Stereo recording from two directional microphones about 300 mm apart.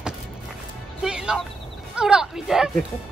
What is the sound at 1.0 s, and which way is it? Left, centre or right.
Music, centre.